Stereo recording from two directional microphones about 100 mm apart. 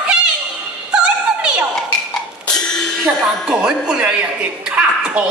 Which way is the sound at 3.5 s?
10° right (ahead or behind).